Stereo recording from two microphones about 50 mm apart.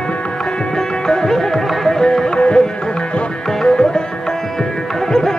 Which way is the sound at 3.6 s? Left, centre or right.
Centre.